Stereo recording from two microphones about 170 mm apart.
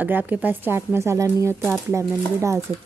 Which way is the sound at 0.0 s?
10° right (ahead or behind).